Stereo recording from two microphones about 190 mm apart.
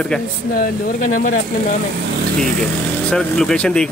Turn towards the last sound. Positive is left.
turn(degrees=5)  # may be behind; listen again after turning